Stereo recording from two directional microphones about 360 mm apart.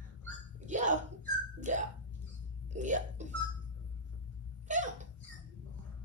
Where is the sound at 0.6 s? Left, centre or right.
Centre.